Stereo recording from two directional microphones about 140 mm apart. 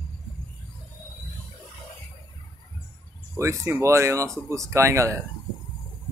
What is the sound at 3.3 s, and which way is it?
Speech, 20° right (ahead or behind).